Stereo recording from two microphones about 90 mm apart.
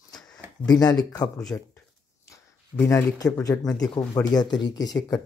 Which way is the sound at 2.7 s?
25° left (ahead or behind).